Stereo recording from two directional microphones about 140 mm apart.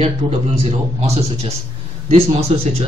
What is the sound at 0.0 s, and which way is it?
Speech, 45° right (ahead or behind).